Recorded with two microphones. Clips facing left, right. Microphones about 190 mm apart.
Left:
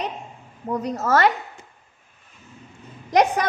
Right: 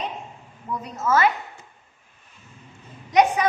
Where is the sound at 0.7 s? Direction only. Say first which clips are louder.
Left 2 dB; 70° left (ahead or behind).